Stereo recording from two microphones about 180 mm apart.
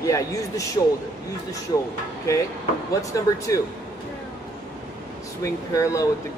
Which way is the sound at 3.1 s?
15° left (ahead or behind).